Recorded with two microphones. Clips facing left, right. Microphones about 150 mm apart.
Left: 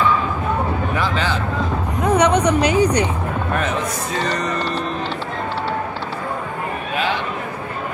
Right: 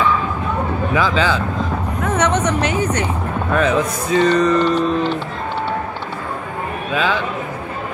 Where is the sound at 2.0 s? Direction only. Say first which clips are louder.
Left 3 dB; 15° left (ahead or behind).